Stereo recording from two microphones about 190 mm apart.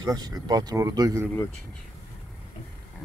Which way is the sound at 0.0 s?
20° right (ahead or behind).